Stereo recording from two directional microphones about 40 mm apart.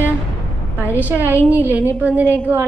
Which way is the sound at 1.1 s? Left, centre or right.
Right.